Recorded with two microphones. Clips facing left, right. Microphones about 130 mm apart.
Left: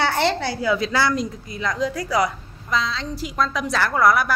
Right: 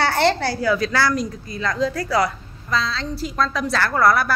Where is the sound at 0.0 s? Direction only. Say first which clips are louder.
Right 2 dB; 15° left (ahead or behind).